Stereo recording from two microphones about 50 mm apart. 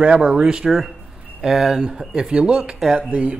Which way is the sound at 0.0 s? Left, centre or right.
Right.